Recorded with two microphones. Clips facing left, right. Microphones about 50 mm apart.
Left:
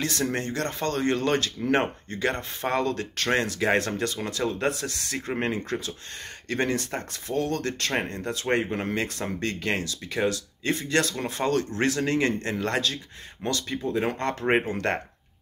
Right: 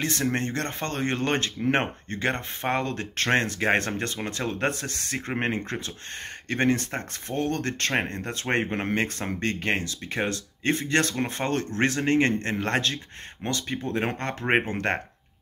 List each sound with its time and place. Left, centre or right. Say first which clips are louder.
0.0 s speech: right 1 dB; right
13.8 s speech: left 3 dB; right